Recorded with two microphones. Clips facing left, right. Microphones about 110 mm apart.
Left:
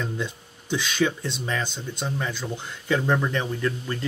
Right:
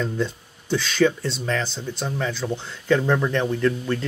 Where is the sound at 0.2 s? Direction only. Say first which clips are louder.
Right 5 dB; 15° left (ahead or behind).